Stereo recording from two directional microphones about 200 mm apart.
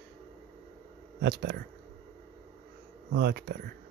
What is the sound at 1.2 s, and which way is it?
Speech, 55° right (ahead or behind).